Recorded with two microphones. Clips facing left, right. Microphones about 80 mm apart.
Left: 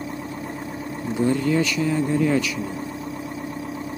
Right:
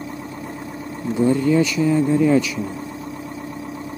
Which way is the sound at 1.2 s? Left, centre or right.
Right.